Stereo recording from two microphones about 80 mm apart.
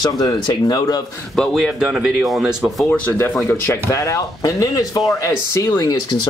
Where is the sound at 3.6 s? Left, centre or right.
Left.